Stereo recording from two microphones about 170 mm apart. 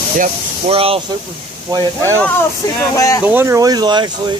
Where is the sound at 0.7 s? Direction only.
35° right (ahead or behind).